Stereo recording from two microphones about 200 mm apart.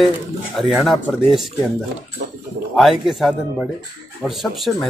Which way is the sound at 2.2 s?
60° right (ahead or behind).